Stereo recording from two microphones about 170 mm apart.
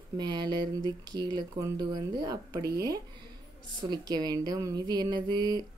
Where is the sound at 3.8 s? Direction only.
25° right (ahead or behind).